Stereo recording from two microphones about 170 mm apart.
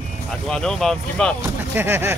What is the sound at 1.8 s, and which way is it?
Speech, 15° right (ahead or behind).